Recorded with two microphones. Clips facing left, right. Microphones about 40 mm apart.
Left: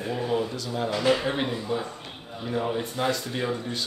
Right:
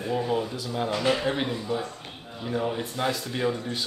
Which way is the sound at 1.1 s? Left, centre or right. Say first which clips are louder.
Left 2 dB; centre.